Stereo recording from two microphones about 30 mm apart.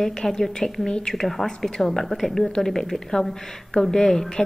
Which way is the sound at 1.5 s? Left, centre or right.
Left.